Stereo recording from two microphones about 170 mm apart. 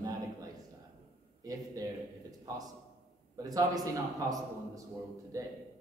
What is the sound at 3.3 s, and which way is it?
A man's voice, 20° right (ahead or behind).